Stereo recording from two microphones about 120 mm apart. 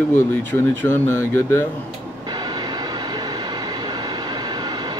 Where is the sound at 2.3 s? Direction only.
35° right (ahead or behind).